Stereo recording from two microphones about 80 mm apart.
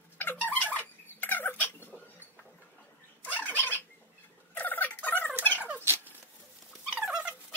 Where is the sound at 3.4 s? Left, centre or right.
Left.